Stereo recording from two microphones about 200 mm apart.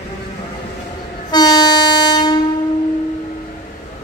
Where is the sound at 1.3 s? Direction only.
20° left (ahead or behind).